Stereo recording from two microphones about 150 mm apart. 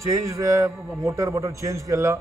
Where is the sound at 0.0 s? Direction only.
20° right (ahead or behind).